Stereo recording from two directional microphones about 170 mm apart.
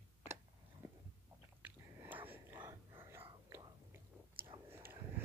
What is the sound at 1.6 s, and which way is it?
Whispering, 10° right (ahead or behind).